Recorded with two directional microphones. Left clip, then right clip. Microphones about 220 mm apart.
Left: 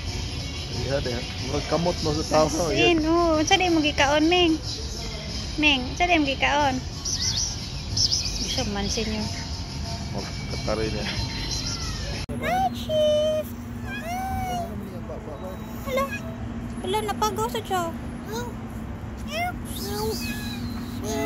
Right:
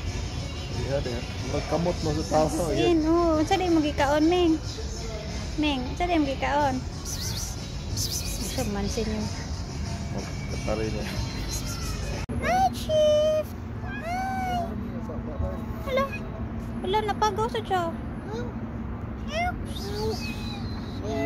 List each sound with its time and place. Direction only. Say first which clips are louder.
1.7 s speech: left 3 dB; 20° left (ahead or behind)
2.7 s speech: left 1 dB; centre (ahead or behind)
5.6 s speech: left 6 dB; centre (ahead or behind)
7.9 s music: left 8 dB; 5° right (ahead or behind)
12.4 s a sound: right 1 dB; centre (ahead or behind)
12.9 s child singing: even; 5° right (ahead or behind)
14.0 s cat: right 1 dB; 5° right (ahead or behind)
16.8 s speech: right 1 dB; centre (ahead or behind)
20.0 s a sound: left 2 dB; centre (ahead or behind)